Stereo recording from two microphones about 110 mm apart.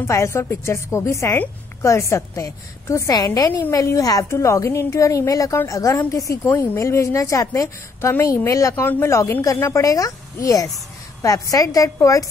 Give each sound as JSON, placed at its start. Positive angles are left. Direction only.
{"t": 0.0, "sound": "a woman's voice", "side_deg": 25}